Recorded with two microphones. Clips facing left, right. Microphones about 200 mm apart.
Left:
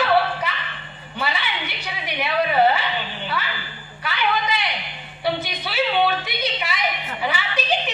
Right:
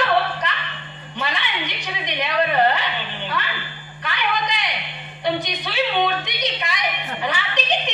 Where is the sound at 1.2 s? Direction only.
5° left (ahead or behind).